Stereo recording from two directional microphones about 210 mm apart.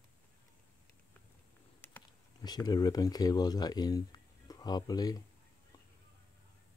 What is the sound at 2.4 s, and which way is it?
Speech, 20° left (ahead or behind).